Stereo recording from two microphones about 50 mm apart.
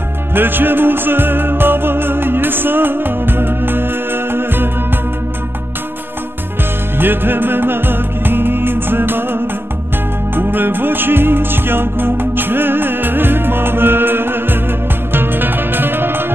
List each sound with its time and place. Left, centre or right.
0.3 s music: right
7.0 s music: right